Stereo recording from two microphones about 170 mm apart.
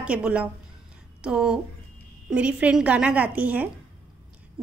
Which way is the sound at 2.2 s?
5° right (ahead or behind).